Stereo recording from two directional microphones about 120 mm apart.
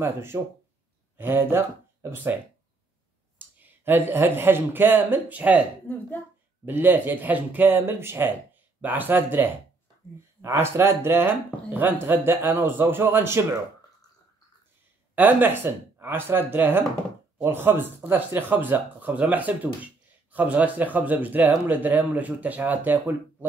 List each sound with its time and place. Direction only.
0.0 s speech: 20° right (ahead or behind)
3.3 s speech: 15° right (ahead or behind)
5.9 s speech: 15° left (ahead or behind)
6.6 s speech: 15° right (ahead or behind)
15.1 s speech: 15° right (ahead or behind)